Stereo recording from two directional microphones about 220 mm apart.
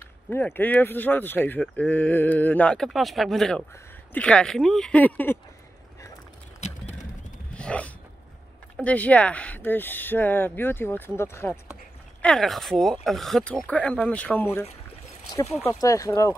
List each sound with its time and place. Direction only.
0.3 s speech: 10° left (ahead or behind)
6.6 s clip-clop: 30° left (ahead or behind)
7.5 s a sound: 5° left (ahead or behind)
8.7 s speech: 5° left (ahead or behind)